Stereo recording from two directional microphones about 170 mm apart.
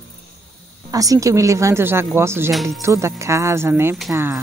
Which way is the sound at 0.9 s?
20° right (ahead or behind).